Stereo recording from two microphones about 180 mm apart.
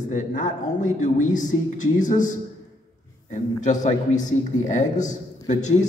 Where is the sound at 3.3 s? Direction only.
45° left (ahead or behind).